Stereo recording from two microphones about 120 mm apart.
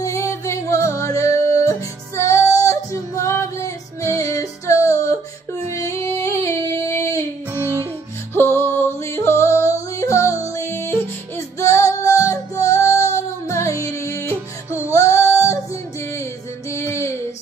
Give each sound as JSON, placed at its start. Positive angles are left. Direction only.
{"t": 0.0, "sound": "music", "side_deg": 25}
{"t": 5.7, "sound": "female singing", "side_deg": 25}
{"t": 7.5, "sound": "music", "side_deg": -20}
{"t": 8.4, "sound": "yodeling", "side_deg": 20}
{"t": 10.7, "sound": "music", "side_deg": 20}